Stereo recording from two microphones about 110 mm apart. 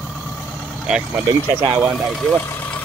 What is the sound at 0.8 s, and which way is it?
Speech, 5° right (ahead or behind).